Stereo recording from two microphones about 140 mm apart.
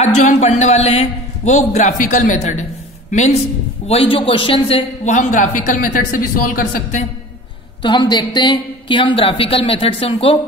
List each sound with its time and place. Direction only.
0.0 s a man's voice: 55° left (ahead or behind); by 4.8 s 40° left (ahead or behind)
5.0 s a man's voice: 60° left (ahead or behind)
7.8 s speech: 30° left (ahead or behind)